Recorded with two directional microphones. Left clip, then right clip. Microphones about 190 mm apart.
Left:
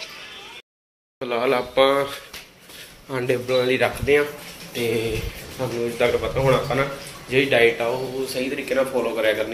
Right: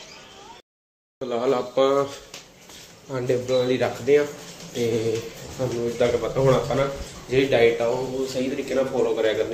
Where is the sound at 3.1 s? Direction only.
Centre (ahead or behind).